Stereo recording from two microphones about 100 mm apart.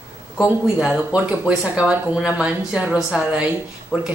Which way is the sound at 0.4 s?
10° right (ahead or behind).